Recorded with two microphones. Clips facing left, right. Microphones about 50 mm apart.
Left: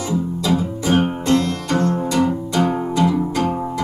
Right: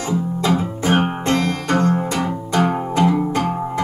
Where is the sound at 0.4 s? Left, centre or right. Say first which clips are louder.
Right 1 dB; right.